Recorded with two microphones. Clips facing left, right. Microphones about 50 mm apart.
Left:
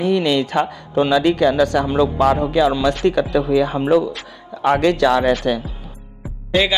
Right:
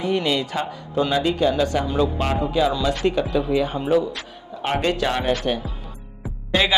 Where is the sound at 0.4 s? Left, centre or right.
Left.